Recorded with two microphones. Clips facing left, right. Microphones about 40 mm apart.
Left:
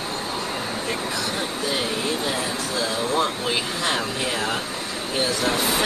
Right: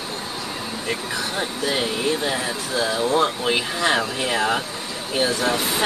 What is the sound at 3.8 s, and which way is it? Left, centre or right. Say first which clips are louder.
Speech: right 3 dB; centre.